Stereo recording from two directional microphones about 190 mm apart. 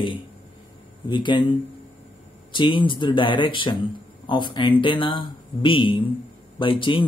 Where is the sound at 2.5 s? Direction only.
25° left (ahead or behind).